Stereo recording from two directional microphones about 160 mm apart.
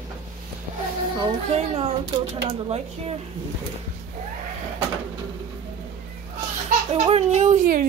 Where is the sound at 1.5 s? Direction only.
40° right (ahead or behind).